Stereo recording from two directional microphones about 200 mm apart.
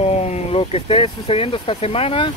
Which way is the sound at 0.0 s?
30° left (ahead or behind).